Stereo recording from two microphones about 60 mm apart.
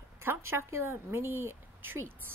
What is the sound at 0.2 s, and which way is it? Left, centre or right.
Speech, right.